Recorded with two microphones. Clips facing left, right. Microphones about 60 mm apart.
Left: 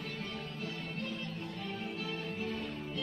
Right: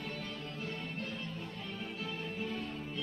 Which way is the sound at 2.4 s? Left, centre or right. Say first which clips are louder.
Left 1 dB; centre.